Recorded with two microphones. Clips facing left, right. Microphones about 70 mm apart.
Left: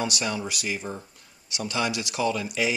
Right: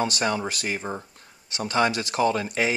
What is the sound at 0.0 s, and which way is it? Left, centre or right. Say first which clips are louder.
Speech: right 4 dB; right.